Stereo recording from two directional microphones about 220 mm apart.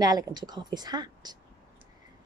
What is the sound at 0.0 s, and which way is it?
A woman's voice, 15° right (ahead or behind).